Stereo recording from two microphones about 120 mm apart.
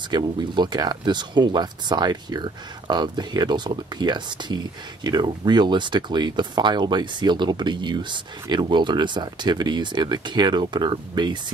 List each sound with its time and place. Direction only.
0.1 s speech: 40° right (ahead or behind)